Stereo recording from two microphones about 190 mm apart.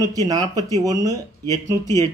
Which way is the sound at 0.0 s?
20° right (ahead or behind).